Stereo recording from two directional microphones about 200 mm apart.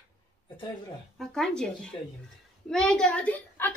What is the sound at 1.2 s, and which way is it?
A woman's voice, centre (ahead or behind).